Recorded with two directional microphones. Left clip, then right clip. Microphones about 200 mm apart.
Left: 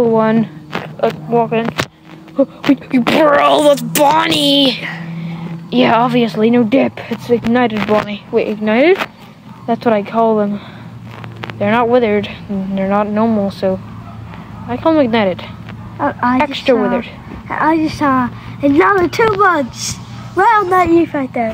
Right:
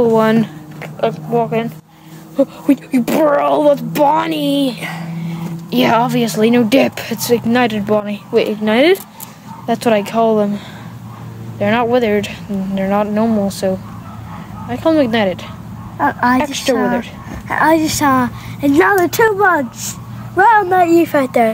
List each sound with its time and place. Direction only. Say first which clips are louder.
0.0 s speech: even; 15° right (ahead or behind)
1.0 s a woman's voice: left 2 dB; centre (ahead or behind)
2.7 s a woman's voice: left 2 dB; 10° right (ahead or behind)
4.8 s speech: left 1 dB; 15° right (ahead or behind)
11.6 s a woman's voice: left 2 dB; 10° right (ahead or behind)
21.0 s speech: right 4 dB; 45° right (ahead or behind)